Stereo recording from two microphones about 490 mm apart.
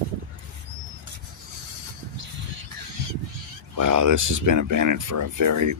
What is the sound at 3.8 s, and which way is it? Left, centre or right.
Speech, right.